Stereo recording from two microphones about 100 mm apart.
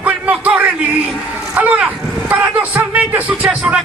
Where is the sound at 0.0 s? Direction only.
15° right (ahead or behind).